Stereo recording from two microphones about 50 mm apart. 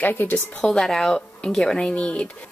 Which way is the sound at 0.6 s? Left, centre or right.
Centre.